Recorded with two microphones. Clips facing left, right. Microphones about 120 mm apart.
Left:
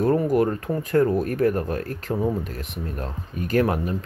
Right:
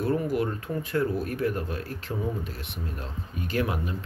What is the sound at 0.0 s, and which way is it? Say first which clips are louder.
Speech: left 7 dB; 40° left (ahead or behind).